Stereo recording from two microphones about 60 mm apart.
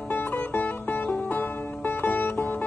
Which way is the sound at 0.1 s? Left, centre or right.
Left.